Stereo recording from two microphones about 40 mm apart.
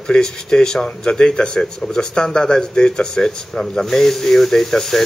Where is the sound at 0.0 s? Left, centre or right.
Centre.